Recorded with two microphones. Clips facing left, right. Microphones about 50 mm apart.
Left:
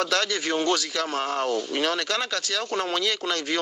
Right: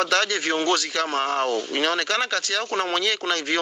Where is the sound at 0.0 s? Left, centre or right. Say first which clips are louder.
Right 3 dB; right.